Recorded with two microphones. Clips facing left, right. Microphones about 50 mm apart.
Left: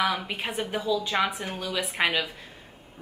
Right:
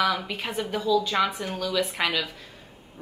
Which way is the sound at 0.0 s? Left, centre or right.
Centre.